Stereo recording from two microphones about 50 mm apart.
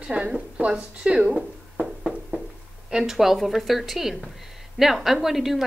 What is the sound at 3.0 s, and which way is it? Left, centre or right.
A woman's voice, centre.